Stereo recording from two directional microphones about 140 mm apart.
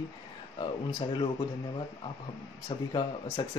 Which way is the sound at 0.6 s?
35° left (ahead or behind).